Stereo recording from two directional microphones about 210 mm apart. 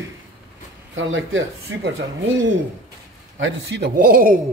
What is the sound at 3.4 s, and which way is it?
Speech, 60° right (ahead or behind).